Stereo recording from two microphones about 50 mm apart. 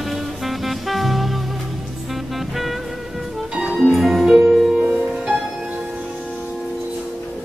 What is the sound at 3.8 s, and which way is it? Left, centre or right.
Music, centre.